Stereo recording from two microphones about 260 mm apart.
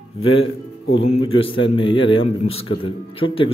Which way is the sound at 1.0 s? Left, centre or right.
Left.